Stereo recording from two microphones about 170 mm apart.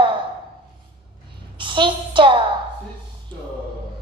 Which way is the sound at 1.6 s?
30° right (ahead or behind).